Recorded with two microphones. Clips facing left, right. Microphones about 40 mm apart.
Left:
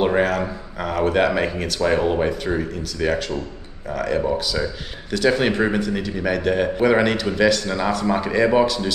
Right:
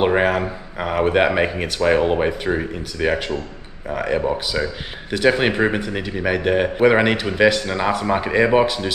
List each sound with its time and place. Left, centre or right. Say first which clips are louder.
0.0 s a man's voice: right 2 dB; right